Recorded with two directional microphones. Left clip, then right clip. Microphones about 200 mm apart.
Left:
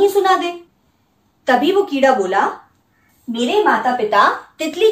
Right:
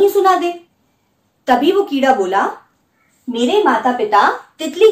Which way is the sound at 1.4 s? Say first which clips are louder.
Right 1 dB; 20° right (ahead or behind).